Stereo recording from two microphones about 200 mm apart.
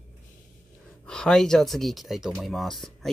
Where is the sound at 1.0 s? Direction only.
5° left (ahead or behind).